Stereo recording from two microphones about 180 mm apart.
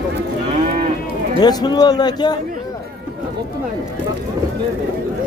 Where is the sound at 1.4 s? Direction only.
20° left (ahead or behind).